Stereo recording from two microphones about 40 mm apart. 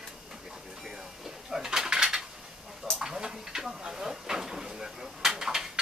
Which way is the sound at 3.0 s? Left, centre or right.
Centre.